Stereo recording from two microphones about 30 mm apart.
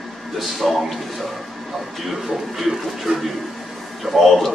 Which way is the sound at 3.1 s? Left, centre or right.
Right.